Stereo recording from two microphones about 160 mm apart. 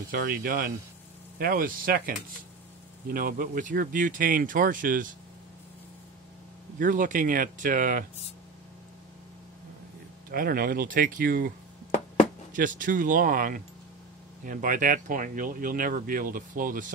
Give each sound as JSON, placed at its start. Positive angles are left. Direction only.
{"t": 0.1, "sound": "speech", "side_deg": -65}
{"t": 6.8, "sound": "speech", "side_deg": -55}
{"t": 10.3, "sound": "speech", "side_deg": -70}
{"t": 12.5, "sound": "speech", "side_deg": -55}